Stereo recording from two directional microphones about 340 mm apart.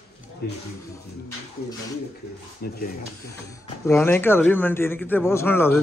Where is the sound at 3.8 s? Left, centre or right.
Centre.